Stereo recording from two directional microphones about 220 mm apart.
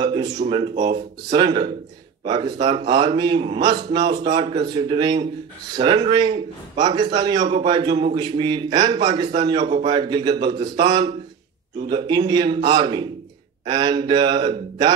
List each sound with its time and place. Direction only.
0.0 s a man's voice: 20° right (ahead or behind)